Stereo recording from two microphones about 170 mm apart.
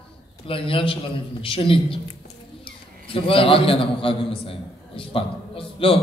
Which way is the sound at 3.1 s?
30° left (ahead or behind).